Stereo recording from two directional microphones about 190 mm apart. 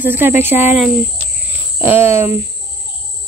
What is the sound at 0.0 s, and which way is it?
Speech, 10° right (ahead or behind).